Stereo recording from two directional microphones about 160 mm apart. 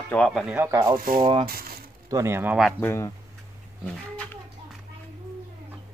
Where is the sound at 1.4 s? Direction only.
70° right (ahead or behind).